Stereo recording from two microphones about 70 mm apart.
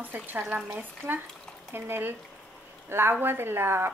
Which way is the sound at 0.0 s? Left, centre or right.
Right.